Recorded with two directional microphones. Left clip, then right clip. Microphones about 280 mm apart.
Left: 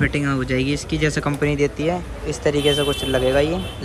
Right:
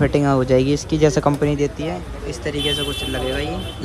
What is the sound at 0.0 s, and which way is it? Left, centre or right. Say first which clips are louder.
Speech: right 4 dB; centre.